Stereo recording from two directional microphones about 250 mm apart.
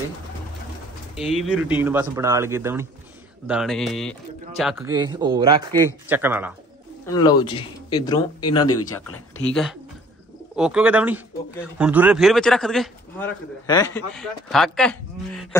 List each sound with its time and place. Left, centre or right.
1.1 s a man's voice: centre
4.8 s a man's voice: centre
7.1 s speech: centre
8.4 s speech: left
9.5 s a man's voice: centre
13.7 s speech: centre
14.1 s a man's voice: centre